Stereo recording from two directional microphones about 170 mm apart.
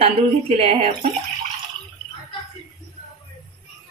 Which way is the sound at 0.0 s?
35° right (ahead or behind).